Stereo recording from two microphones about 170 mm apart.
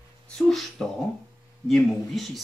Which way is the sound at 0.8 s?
5° left (ahead or behind).